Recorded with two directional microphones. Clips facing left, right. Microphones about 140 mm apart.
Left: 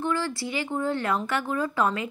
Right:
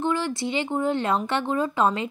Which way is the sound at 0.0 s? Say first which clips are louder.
Right 3 dB; 20° right (ahead or behind).